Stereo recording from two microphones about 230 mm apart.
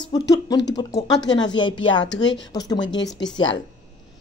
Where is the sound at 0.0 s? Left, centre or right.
Centre.